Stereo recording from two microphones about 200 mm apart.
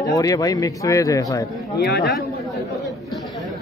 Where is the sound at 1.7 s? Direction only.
55° left (ahead or behind).